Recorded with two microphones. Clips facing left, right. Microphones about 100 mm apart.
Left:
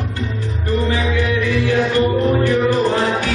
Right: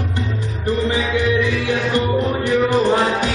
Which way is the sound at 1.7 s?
20° right (ahead or behind).